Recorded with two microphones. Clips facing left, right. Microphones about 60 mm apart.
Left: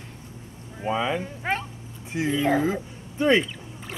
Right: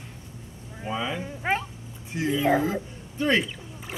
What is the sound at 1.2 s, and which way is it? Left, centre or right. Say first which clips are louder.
Speech: right 1 dB; centre.